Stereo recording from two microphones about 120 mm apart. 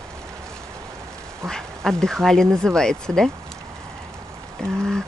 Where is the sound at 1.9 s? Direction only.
5° left (ahead or behind).